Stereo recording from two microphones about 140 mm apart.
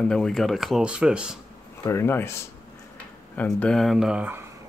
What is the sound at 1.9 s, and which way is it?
Speech, 15° left (ahead or behind).